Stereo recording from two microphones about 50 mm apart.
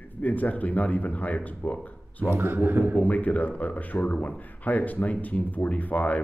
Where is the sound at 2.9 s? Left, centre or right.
Left.